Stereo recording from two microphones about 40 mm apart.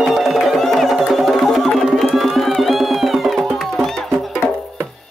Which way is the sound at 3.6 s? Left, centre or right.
Centre.